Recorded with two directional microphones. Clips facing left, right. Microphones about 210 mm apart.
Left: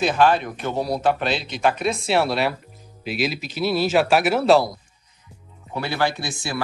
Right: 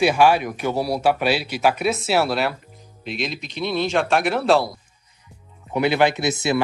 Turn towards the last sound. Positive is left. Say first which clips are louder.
# right 8 dB
turn(degrees=-20)  # may be behind; listen again after turning